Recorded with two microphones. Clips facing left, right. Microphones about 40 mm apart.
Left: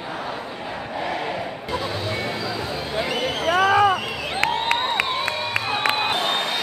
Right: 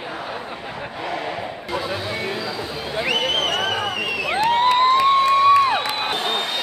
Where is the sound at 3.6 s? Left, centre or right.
Left.